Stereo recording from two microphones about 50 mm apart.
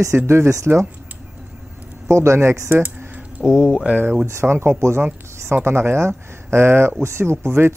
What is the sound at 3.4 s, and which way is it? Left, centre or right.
Speech, centre.